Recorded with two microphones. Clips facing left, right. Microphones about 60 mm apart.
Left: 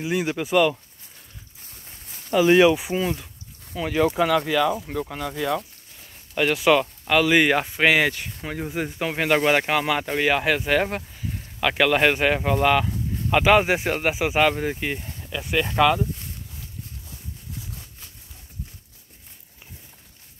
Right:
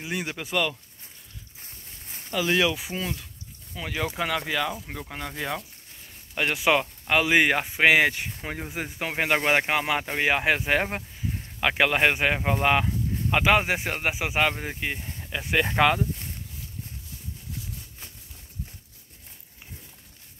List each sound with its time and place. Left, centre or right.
0.0 s speech: centre
2.3 s speech: left
3.7 s speech: centre
4.5 s speech: centre
6.3 s speech: centre
12.8 s speech: centre
15.1 s a sound: right
15.5 s speech: right